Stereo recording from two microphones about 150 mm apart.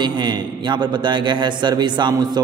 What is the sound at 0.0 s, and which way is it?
A man's voice, 30° right (ahead or behind).